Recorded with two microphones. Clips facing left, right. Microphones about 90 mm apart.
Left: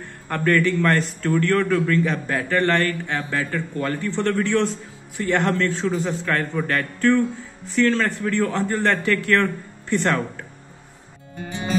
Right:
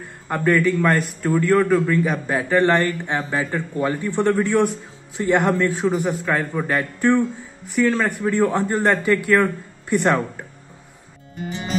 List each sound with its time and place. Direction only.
0.3 s a man's voice: 10° right (ahead or behind)